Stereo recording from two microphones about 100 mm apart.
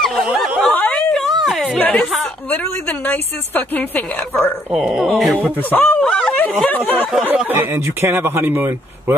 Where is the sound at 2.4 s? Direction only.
20° left (ahead or behind).